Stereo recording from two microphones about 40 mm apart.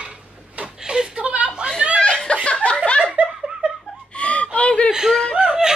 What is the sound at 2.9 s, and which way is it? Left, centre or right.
Laughter, left.